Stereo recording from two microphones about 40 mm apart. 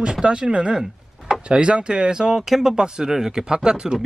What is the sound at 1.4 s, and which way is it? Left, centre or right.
Speech, right.